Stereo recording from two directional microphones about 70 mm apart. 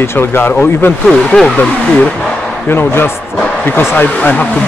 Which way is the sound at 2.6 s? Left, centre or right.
Left.